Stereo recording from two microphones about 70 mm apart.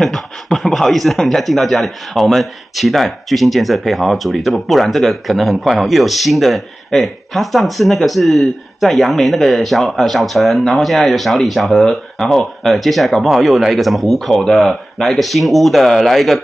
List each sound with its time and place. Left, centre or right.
0.0 s speech: centre